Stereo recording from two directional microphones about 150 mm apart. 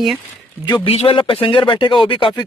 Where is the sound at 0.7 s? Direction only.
40° left (ahead or behind).